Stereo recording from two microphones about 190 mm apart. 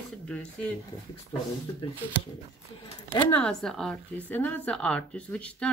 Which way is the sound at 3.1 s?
10° left (ahead or behind).